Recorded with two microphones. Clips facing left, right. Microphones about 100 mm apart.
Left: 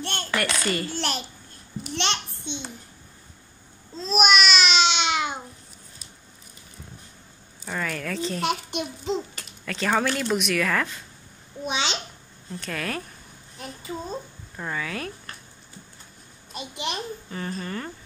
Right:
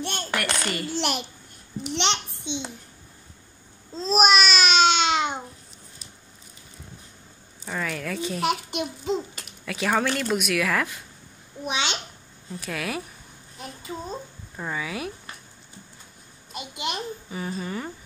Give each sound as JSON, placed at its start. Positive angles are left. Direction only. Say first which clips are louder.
{"t": 0.0, "sound": "a sound", "louder": "left 1 dB", "side_deg": -15}
{"t": 0.7, "sound": "a child's voice", "louder": "even", "side_deg": -10}
{"t": 3.9, "sound": "babbling", "louder": "right 1 dB", "side_deg": -35}
{"t": 7.6, "sound": "a child's voice", "louder": "even", "side_deg": 0}
{"t": 16.5, "sound": "a child's voice", "louder": "even", "side_deg": -10}